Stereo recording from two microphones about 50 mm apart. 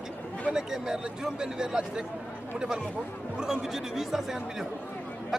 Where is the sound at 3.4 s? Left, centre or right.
Centre.